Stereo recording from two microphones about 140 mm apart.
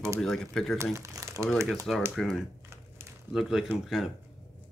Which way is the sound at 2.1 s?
Centre (ahead or behind).